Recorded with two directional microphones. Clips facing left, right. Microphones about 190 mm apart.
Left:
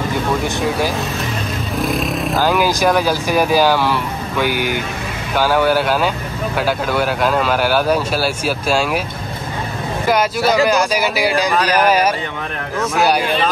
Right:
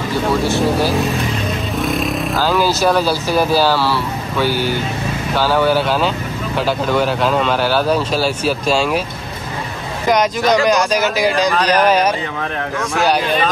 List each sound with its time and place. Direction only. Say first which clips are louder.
1.8 s vehicle: left 1 dB; centre (ahead or behind)
2.4 s speech: even; 15° left (ahead or behind)
10.0 s speech: right 1 dB; 5° left (ahead or behind)